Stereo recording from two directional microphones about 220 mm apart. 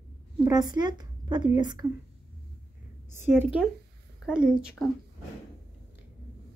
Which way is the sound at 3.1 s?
10° right (ahead or behind).